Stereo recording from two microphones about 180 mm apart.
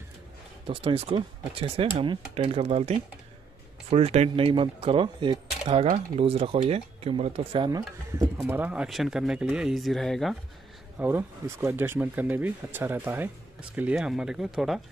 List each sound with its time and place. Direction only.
0.7 s speech: 30° right (ahead or behind)
8.4 s speech: 10° right (ahead or behind)
11.0 s speech: 10° right (ahead or behind)